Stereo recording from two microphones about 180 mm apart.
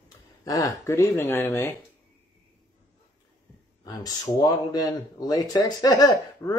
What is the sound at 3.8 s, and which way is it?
A man's voice, 20° left (ahead or behind).